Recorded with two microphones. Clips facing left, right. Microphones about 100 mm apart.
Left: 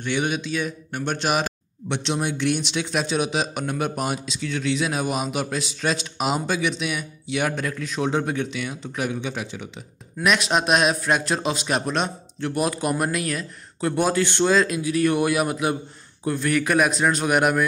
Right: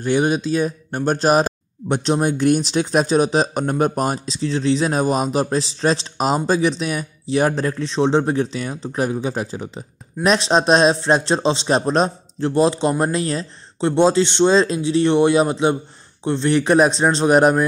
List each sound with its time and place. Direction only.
0.0 s a man's voice: 40° right (ahead or behind)